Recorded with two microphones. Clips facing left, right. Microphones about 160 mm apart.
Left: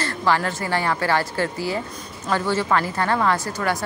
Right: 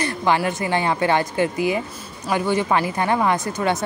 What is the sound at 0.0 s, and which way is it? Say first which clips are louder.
Speech: right 2 dB; 20° right (ahead or behind).